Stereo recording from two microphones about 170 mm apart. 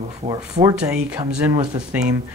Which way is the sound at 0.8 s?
5° right (ahead or behind).